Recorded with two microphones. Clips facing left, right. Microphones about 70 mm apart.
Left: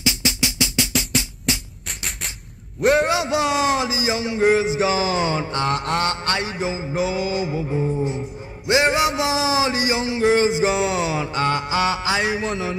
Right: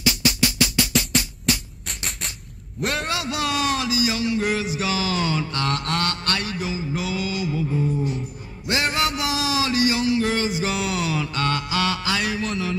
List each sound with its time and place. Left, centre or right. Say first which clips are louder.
0.0 s drum: right 2 dB; left
2.8 s a man's voice: left 9 dB; centre
3.1 s mantra: left 5 dB; left